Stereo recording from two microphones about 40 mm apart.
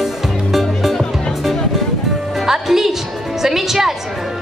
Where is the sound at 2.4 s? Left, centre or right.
Centre.